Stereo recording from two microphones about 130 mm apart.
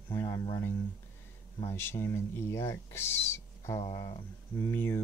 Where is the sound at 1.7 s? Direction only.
15° left (ahead or behind).